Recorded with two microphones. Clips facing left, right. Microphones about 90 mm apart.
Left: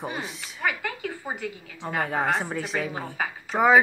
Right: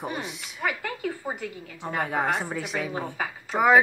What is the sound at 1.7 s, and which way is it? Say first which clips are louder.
A woman's voice: even; 5° right (ahead or behind).